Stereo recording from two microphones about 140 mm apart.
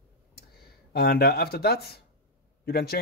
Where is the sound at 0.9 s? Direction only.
90° left.